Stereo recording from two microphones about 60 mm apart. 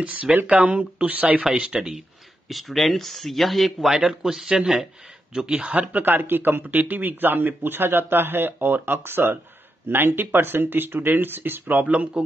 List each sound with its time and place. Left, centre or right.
0.0 s speech: right
1.4 s speech: centre
3.9 s a man's voice: centre